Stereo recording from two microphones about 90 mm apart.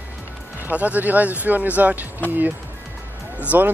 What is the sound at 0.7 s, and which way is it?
Speech, 15° right (ahead or behind).